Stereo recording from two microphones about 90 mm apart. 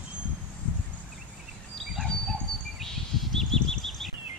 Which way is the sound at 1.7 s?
Centre (ahead or behind).